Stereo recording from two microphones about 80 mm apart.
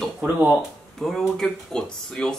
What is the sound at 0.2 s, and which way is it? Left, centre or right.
Speech, right.